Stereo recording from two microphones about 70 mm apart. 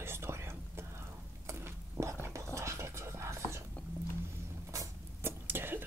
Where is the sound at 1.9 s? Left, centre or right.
Right.